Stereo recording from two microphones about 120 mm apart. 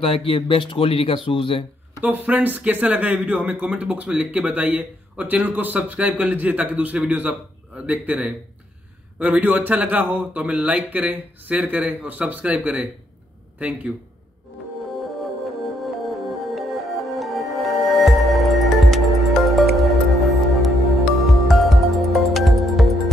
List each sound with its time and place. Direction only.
0.0 s speech: 50° left (ahead or behind)
2.0 s speech: 15° right (ahead or behind)
15.8 s music: centre (ahead or behind)